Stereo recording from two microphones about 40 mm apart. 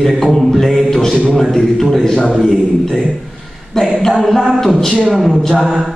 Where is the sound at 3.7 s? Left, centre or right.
Centre.